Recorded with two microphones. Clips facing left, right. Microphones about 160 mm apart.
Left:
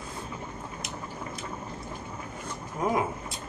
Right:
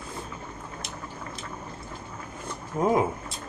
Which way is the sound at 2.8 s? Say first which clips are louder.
Right 5 dB; 25° right (ahead or behind).